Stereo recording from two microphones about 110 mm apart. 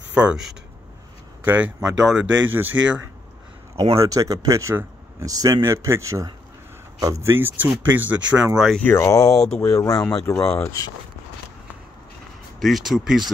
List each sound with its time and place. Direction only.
0.1 s speech: 10° right (ahead or behind)
2.4 s speech: 15° right (ahead or behind)
4.0 s speech: 30° right (ahead or behind); by 8.5 s 15° right (ahead or behind)
8.7 s speech: 20° left (ahead or behind)
9.4 s speech: 5° left (ahead or behind)
9.7 s speech: 30° left (ahead or behind)
12.5 s speech: centre (ahead or behind)